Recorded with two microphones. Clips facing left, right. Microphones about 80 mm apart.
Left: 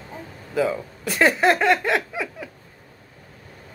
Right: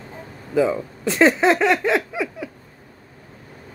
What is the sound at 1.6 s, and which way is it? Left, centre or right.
Speech, centre.